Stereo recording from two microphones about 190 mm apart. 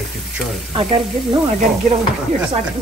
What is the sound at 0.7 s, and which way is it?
Sizzle, 30° right (ahead or behind).